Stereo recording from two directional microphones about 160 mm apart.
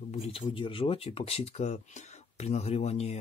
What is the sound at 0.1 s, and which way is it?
Speech, 35° left (ahead or behind).